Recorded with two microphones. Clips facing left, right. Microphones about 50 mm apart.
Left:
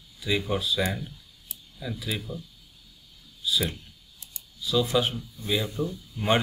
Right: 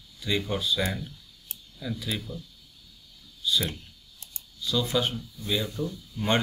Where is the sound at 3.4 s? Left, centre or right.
Centre.